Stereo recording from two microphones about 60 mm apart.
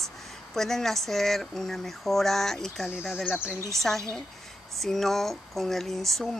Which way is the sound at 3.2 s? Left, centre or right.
Centre.